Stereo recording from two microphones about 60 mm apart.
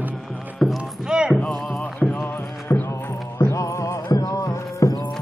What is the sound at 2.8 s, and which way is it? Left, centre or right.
Music, left.